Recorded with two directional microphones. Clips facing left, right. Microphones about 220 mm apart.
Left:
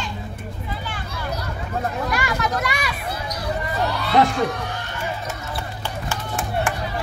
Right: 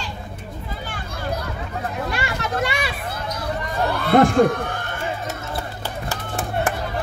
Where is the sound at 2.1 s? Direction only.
30° right (ahead or behind).